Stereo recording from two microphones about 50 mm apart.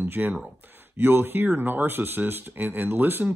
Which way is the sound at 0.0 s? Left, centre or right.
Right.